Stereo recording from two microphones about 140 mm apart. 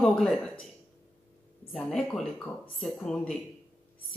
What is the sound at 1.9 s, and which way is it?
Speech, 5° left (ahead or behind).